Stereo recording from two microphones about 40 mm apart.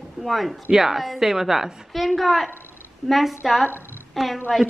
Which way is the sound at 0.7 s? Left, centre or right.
Centre.